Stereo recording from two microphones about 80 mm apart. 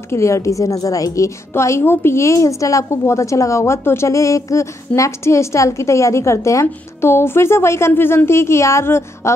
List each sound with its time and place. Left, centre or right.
0.1 s a woman's voice: left